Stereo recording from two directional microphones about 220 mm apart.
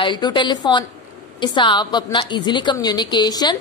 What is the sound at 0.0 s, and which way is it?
A woman's voice, 20° left (ahead or behind).